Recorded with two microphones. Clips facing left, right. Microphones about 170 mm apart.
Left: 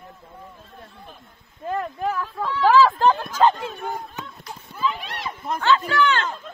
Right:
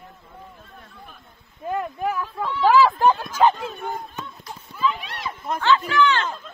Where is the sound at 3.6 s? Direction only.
5° left (ahead or behind).